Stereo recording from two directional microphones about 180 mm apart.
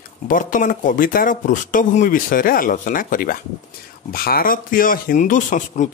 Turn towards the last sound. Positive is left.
turn(degrees=45)  # may be behind; listen again after turning